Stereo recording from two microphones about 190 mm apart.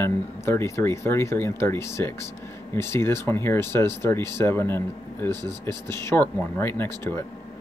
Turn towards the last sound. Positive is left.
turn(degrees=10)  # may be behind; listen again after turning